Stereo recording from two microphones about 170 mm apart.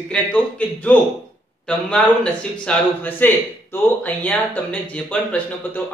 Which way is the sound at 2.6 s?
10° left (ahead or behind).